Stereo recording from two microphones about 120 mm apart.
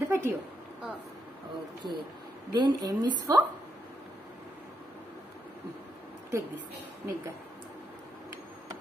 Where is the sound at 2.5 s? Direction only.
35° right (ahead or behind).